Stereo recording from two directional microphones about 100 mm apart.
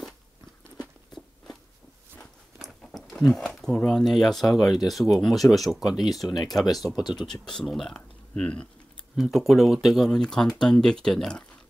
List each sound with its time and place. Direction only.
2.1 s a sound: centre (ahead or behind)
3.6 s speech: 5° left (ahead or behind)
7.0 s speech: 45° left (ahead or behind)
7.4 s speech: 5° left (ahead or behind)
9.1 s speech: centre (ahead or behind)